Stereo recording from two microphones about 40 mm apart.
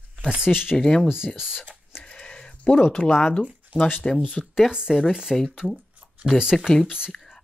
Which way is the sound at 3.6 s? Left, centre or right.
Right.